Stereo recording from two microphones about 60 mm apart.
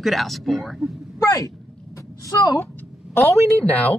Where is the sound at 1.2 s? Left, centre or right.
Left.